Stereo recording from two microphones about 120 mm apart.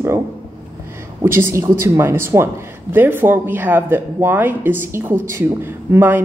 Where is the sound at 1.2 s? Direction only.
20° right (ahead or behind).